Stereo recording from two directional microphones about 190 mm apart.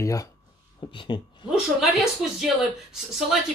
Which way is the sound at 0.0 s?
15° left (ahead or behind).